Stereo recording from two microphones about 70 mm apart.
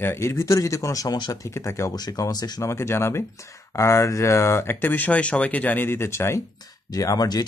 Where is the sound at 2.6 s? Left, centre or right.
Left.